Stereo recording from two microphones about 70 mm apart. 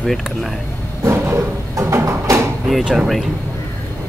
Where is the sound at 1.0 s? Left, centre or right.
Right.